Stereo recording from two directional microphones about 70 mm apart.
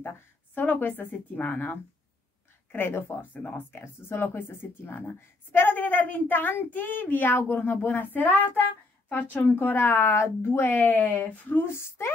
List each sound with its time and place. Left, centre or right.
0.6 s speech: left